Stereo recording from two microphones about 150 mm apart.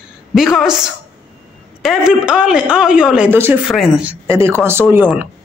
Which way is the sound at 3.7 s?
Centre (ahead or behind).